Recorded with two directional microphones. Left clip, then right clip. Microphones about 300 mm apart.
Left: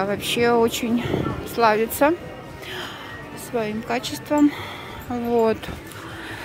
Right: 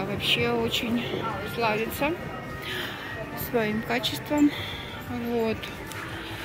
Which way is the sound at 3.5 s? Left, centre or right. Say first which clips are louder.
Left 2 dB; centre.